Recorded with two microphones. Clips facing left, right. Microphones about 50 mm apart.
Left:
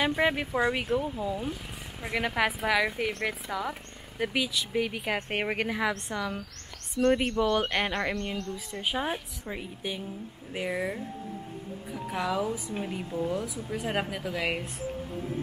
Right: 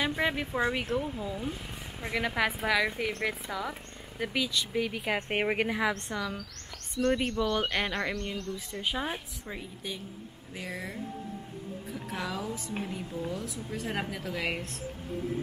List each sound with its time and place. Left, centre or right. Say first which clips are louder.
0.0 s speech: left 3 dB; centre
7.1 s speech: left 3 dB; left
7.5 s speech: left 2 dB; centre
8.1 s speech: left 2 dB; left
8.7 s speech: left 3 dB; centre
11.9 s speech: left 6 dB; centre